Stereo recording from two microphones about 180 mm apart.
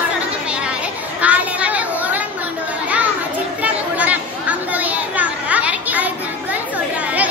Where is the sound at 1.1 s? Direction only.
5° right (ahead or behind).